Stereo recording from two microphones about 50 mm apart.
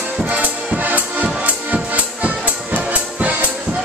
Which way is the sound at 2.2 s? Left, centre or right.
Right.